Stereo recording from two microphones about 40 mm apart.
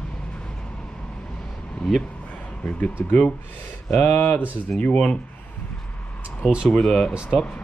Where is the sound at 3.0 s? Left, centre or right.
Left.